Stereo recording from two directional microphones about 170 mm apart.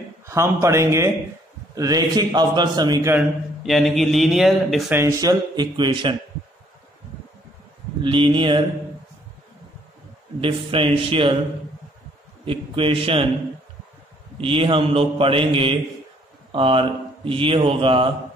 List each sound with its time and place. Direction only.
0.3 s a man's voice: 15° right (ahead or behind)
3.2 s a man's voice: centre (ahead or behind)
4.9 s a man's voice: 20° right (ahead or behind)
8.0 s a man's voice: 30° right (ahead or behind)
10.4 s speech: 30° right (ahead or behind)
12.4 s speech: 30° right (ahead or behind)
14.4 s speech: 35° right (ahead or behind)